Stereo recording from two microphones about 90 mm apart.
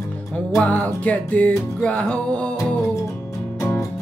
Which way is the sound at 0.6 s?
15° left (ahead or behind).